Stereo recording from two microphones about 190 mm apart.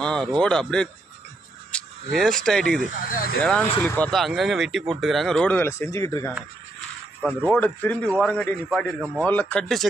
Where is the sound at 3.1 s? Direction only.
50° left (ahead or behind).